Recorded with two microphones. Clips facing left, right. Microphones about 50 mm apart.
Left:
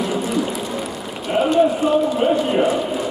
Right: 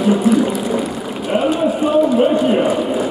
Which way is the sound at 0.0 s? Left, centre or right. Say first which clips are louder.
Right 7 dB; centre.